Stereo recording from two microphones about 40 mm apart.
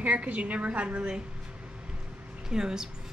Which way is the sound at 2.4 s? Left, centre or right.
Centre.